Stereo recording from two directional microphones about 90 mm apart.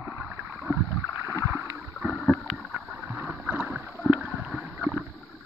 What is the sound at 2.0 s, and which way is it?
Rowboat, 5° right (ahead or behind).